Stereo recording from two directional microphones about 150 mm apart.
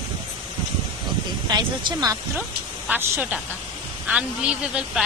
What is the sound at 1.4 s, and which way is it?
Speech, 25° right (ahead or behind).